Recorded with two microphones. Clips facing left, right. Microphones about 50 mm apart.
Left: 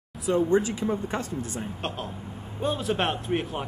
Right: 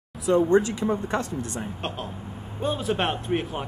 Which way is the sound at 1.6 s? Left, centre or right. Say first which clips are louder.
Right 1 dB; centre.